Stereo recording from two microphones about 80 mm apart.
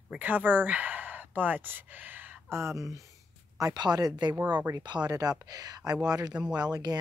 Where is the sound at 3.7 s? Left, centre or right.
Right.